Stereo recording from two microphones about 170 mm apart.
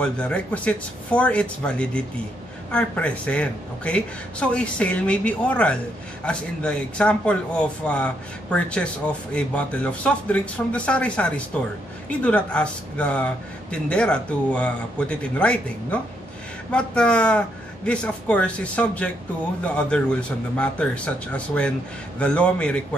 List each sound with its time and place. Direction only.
0.0 s speech: 5° left (ahead or behind)